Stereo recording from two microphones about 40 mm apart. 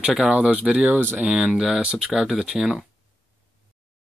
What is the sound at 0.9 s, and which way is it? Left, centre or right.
Speech, right.